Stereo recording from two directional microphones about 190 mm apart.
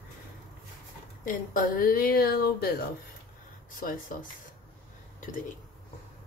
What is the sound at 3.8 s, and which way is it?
Speech, 45° left (ahead or behind).